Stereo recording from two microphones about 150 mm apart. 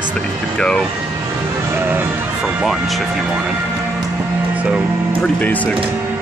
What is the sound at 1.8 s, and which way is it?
Music, 10° right (ahead or behind).